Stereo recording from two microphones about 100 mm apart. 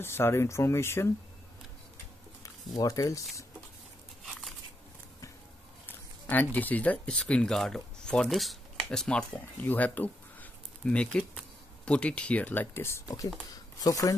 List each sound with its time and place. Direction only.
0.0 s speech: 25° left (ahead or behind)
2.8 s speech: 35° left (ahead or behind)
5.9 s speech: 15° left (ahead or behind); by 14.1 s 35° left (ahead or behind)